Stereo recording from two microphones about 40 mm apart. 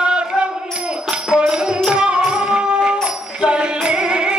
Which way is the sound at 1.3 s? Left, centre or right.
Right.